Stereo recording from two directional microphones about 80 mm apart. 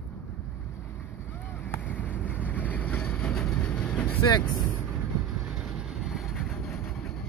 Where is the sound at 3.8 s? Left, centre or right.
Centre.